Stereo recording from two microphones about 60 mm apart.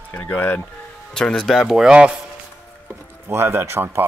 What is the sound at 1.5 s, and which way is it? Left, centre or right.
Speech, centre.